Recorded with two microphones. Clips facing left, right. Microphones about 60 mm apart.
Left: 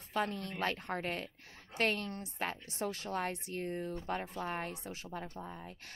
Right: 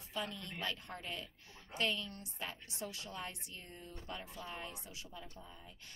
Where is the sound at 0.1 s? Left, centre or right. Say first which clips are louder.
Left 7 dB; left.